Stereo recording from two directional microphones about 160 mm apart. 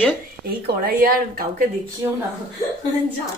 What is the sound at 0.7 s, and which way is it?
Speech, 70° right (ahead or behind).